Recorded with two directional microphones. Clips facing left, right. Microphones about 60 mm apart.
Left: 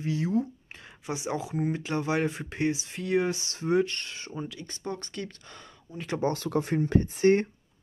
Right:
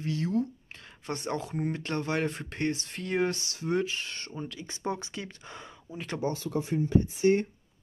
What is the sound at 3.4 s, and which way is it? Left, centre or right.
Speech, left.